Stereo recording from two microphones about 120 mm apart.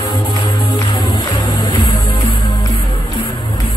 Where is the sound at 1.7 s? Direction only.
40° left (ahead or behind).